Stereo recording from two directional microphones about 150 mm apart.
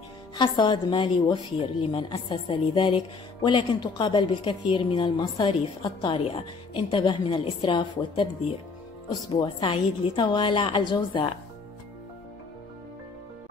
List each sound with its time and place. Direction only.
0.4 s a woman's voice: 30° left (ahead or behind)